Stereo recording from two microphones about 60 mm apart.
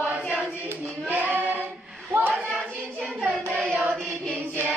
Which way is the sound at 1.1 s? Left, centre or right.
Right.